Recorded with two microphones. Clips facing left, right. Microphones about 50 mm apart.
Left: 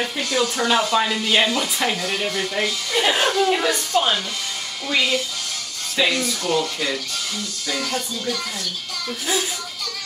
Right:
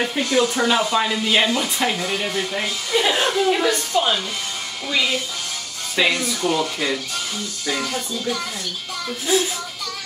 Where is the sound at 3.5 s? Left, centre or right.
Centre.